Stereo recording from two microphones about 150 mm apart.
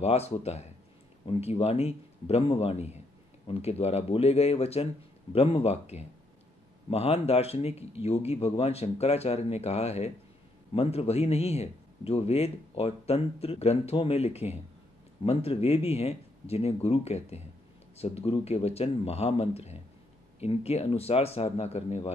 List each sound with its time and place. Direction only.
0.0 s a man's voice: 45° left (ahead or behind)